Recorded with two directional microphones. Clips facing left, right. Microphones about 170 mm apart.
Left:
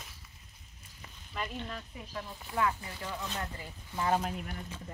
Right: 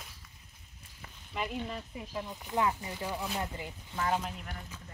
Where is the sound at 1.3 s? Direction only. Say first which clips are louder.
Right 3 dB; 10° right (ahead or behind).